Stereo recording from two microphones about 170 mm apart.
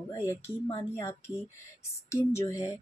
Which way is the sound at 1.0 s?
20° left (ahead or behind).